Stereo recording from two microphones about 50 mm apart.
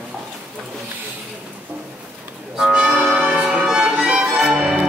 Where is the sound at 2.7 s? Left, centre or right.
Right.